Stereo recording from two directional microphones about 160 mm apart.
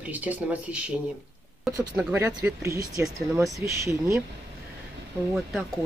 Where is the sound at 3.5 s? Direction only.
20° right (ahead or behind).